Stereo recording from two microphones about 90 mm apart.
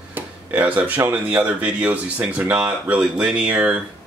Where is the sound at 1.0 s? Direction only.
15° right (ahead or behind).